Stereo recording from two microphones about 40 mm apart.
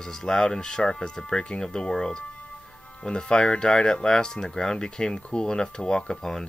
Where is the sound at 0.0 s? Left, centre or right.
Centre.